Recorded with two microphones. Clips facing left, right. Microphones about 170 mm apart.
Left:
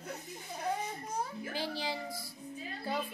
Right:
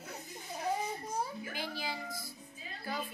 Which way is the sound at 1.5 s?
30° left (ahead or behind).